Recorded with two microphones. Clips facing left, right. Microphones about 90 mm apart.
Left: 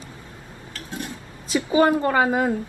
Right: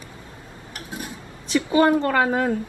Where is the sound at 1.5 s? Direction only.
10° left (ahead or behind).